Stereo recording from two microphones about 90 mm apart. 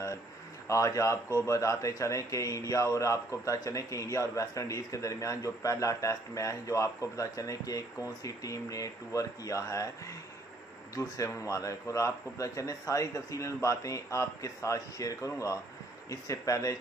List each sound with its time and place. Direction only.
0.7 s speech: 35° left (ahead or behind)
11.0 s speech: 40° left (ahead or behind)